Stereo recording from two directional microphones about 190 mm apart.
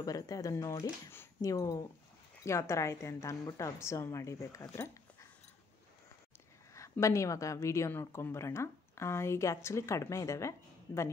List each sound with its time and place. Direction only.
0.0 s a woman's voice: 20° left (ahead or behind)
6.7 s a woman's voice: 15° left (ahead or behind)